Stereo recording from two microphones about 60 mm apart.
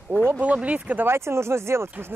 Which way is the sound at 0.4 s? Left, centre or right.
Right.